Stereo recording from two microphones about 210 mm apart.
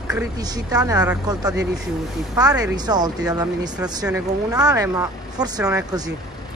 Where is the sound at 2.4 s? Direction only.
20° right (ahead or behind).